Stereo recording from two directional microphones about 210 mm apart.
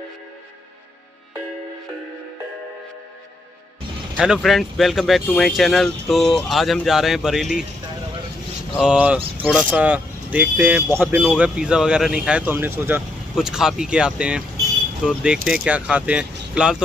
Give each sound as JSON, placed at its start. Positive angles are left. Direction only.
{"t": 4.2, "sound": "speech", "side_deg": 0}
{"t": 8.7, "sound": "speech", "side_deg": -5}